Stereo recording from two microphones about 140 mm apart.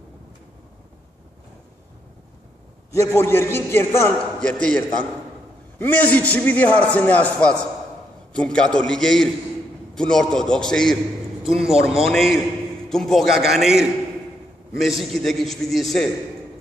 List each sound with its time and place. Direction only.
2.9 s a man's voice: 20° left (ahead or behind); by 16.1 s centre (ahead or behind)